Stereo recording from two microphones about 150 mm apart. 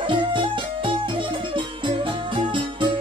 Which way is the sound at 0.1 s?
35° right (ahead or behind).